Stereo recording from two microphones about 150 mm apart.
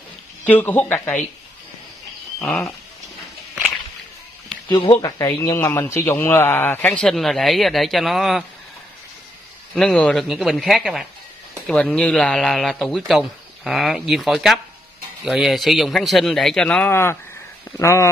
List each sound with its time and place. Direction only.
0.5 s a man's voice: 10° left (ahead or behind)
5.0 s a man's voice: 25° left (ahead or behind); by 8.5 s centre (ahead or behind)
9.8 s a man's voice: 5° left (ahead or behind)